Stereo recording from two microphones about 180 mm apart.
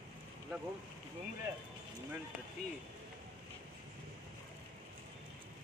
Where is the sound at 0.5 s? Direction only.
10° right (ahead or behind).